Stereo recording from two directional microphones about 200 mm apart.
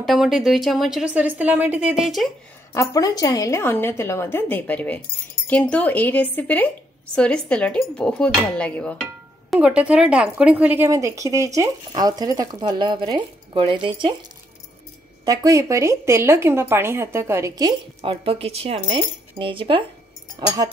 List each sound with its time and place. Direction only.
0.0 s a woman's voice: centre (ahead or behind)
2.7 s a woman's voice: 15° left (ahead or behind); by 14.1 s 25° right (ahead or behind)
15.2 s speech: 15° right (ahead or behind)